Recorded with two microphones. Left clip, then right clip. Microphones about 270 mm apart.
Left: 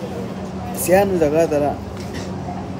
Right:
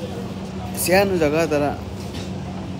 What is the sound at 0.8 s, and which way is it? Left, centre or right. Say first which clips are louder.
Speech: left 2 dB; centre.